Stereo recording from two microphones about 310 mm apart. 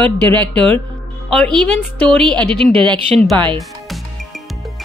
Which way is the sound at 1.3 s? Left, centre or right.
Centre.